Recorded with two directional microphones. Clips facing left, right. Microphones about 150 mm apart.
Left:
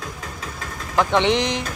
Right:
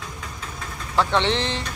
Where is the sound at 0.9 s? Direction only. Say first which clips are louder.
Left 3 dB; 15° left (ahead or behind).